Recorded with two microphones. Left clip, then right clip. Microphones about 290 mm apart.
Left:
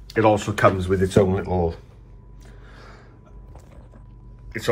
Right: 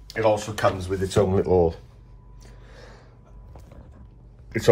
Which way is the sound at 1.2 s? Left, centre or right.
Centre.